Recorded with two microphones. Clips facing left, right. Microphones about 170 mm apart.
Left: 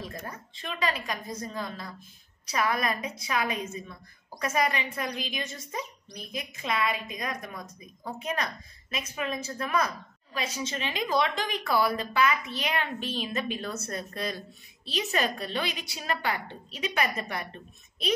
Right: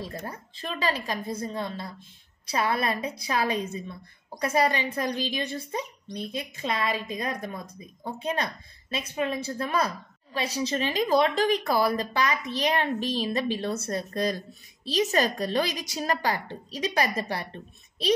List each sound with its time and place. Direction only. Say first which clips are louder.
0.0 s a woman's voice: right 3 dB; 30° right (ahead or behind)